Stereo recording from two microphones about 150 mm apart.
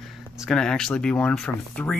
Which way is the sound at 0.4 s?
5° left (ahead or behind).